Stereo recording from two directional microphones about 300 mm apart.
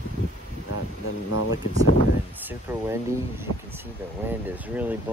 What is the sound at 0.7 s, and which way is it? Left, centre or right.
Speech, left.